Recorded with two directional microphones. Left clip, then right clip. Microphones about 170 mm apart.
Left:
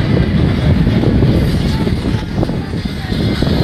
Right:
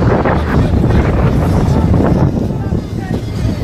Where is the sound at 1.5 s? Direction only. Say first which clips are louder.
Right 4 dB; 60° right (ahead or behind).